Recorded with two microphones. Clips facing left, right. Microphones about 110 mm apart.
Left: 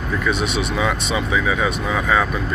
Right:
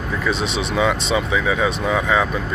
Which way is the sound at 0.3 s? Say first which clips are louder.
Even; 25° right (ahead or behind).